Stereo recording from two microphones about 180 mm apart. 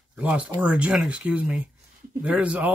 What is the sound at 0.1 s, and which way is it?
Speech, 5° right (ahead or behind).